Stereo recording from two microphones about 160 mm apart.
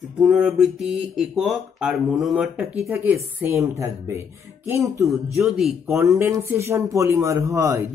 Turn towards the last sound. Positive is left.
turn(degrees=-15)  # may be behind; listen again after turning